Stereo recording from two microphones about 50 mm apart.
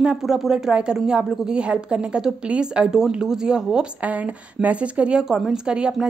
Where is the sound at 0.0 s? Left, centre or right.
Centre.